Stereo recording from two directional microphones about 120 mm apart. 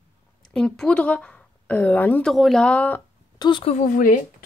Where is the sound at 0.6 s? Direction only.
5° left (ahead or behind).